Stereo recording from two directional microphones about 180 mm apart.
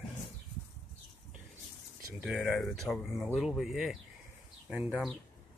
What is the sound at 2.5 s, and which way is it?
Speech, 5° left (ahead or behind).